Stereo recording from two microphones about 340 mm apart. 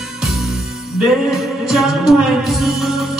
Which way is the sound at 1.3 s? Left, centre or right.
Centre.